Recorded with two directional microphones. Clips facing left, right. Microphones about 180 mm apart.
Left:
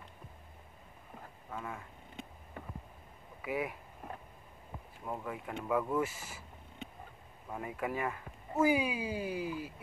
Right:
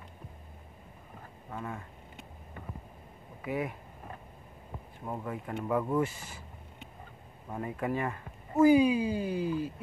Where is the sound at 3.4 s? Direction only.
5° left (ahead or behind).